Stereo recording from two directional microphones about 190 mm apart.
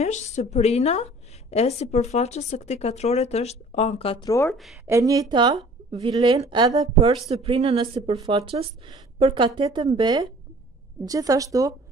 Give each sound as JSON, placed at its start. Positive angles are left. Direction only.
{"t": 0.0, "sound": "a woman's voice", "side_deg": 40}
{"t": 4.5, "sound": "speech", "side_deg": 0}
{"t": 4.8, "sound": "speech", "side_deg": -15}
{"t": 7.2, "sound": "speech", "side_deg": -35}